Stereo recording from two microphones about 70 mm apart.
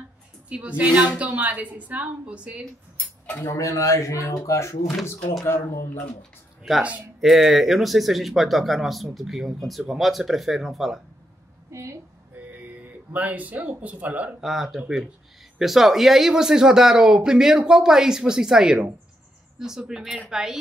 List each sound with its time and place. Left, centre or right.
0.5 s speech: centre
3.4 s speech: left
6.8 s speech: centre
7.2 s speech: centre
11.7 s a sound: right
12.4 s speech: right
14.4 s speech: centre